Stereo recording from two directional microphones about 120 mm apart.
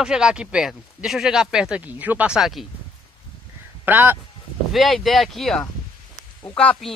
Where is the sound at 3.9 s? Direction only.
15° right (ahead or behind).